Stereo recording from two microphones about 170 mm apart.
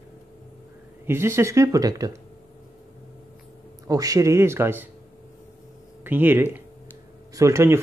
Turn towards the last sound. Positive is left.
turn(degrees=-15)  # may be behind; listen again after turning